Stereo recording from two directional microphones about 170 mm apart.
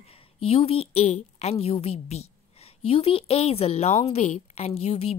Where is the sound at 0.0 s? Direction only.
35° left (ahead or behind).